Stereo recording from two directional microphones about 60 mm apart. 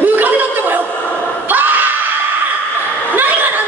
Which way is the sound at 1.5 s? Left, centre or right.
Right.